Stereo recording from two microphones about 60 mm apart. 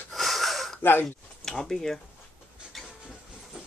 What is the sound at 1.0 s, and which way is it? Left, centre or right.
Speech, centre.